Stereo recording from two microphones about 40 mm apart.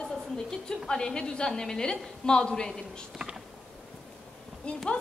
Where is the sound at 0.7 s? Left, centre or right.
Centre.